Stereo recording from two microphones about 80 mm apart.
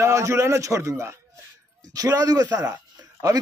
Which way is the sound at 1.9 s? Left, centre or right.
Right.